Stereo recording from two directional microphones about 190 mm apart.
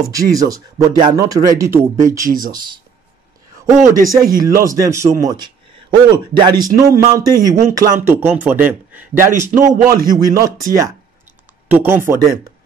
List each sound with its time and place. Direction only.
0.0 s speech: 20° right (ahead or behind)
2.2 s a man's voice: 45° right (ahead or behind)
3.8 s a man's voice: 15° right (ahead or behind)
9.6 s a man's voice: 45° right (ahead or behind)
10.0 s speech: 20° right (ahead or behind)